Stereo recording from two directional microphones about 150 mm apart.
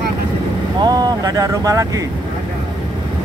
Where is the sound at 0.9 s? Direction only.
25° right (ahead or behind).